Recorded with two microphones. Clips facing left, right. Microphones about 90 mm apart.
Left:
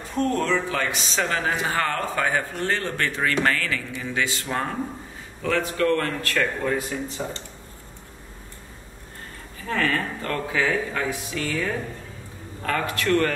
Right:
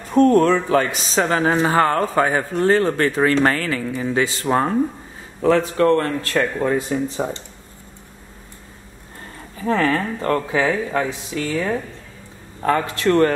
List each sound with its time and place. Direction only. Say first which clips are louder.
0.1 s speech: right 9 dB; 45° right (ahead or behind); by 7.4 s 30° right (ahead or behind)
9.7 s speech: right 6 dB; 30° right (ahead or behind)